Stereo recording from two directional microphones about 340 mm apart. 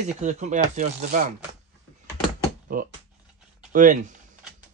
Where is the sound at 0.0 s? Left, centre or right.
Right.